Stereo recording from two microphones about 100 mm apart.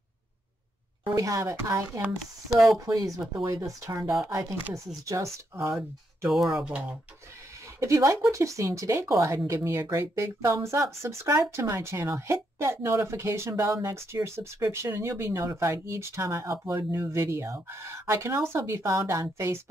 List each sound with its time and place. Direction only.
1.1 s speech: 35° right (ahead or behind)
5.8 s speech: 5° right (ahead or behind)
7.8 s a woman's voice: 30° right (ahead or behind)